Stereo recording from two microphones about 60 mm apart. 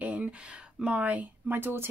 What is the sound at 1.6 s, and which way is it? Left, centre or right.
Speech, right.